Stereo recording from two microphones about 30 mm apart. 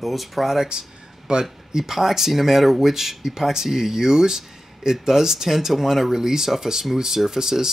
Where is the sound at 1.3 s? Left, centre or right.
Right.